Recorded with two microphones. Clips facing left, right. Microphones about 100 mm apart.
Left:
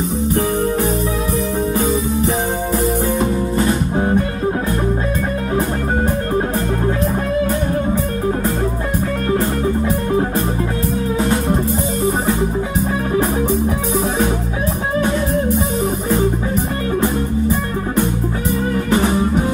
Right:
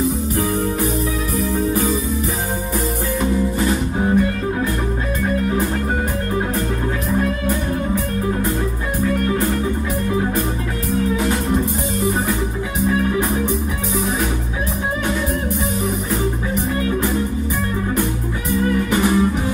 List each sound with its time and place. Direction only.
1.8 s music: 30° left (ahead or behind)
7.1 s music: 30° left (ahead or behind)
11.1 s music: 30° left (ahead or behind)
18.5 s music: 30° left (ahead or behind)